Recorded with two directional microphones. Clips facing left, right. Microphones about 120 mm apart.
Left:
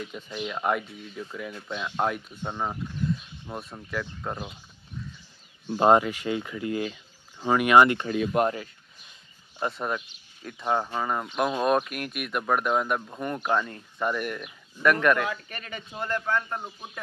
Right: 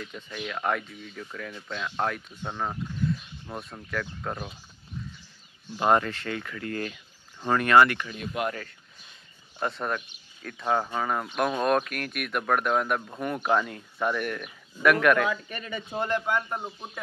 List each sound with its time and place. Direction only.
0.0 s speech: 20° left (ahead or behind)
5.9 s speech: 15° left (ahead or behind)
8.1 s speech: 55° left (ahead or behind)
9.6 s speech: 5° left (ahead or behind)
16.0 s a man's voice: 15° right (ahead or behind)